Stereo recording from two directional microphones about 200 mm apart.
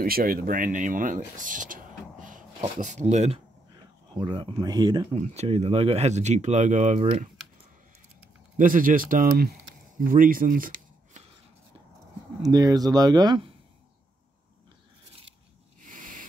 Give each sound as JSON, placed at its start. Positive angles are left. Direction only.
{"t": 0.0, "sound": "speech", "side_deg": -45}
{"t": 4.1, "sound": "speech", "side_deg": -20}
{"t": 5.2, "sound": "speech", "side_deg": -30}
{"t": 8.5, "sound": "speech", "side_deg": -45}
{"t": 9.9, "sound": "shuffling cards", "side_deg": -45}
{"t": 12.4, "sound": "speech", "side_deg": -20}
{"t": 15.8, "sound": "a sound", "side_deg": -40}